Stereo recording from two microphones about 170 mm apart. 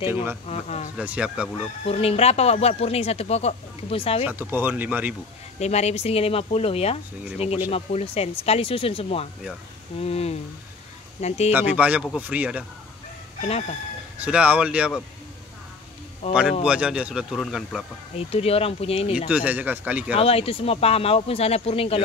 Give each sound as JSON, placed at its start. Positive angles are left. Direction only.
{"t": 0.1, "sound": "speech", "side_deg": -15}
{"t": 0.5, "sound": "speech", "side_deg": 40}
{"t": 0.9, "sound": "speech", "side_deg": -5}
{"t": 1.9, "sound": "speech", "side_deg": 35}
{"t": 4.2, "sound": "speech", "side_deg": -10}
{"t": 5.6, "sound": "speech", "side_deg": 40}
{"t": 11.5, "sound": "speech", "side_deg": -10}
{"t": 13.4, "sound": "speech", "side_deg": 40}
{"t": 14.1, "sound": "speech", "side_deg": -5}
{"t": 16.6, "sound": "speech", "side_deg": -5}
{"t": 18.1, "sound": "speech", "side_deg": 35}
{"t": 19.1, "sound": "speech", "side_deg": -5}
{"t": 20.2, "sound": "speech", "side_deg": 35}